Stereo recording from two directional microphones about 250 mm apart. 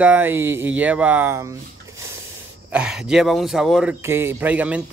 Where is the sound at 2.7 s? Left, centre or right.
Centre.